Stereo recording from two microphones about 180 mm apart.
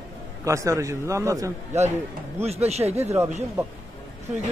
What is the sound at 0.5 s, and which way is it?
A man's voice, 15° right (ahead or behind).